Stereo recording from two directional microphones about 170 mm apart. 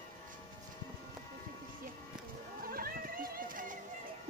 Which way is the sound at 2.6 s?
60° right (ahead or behind).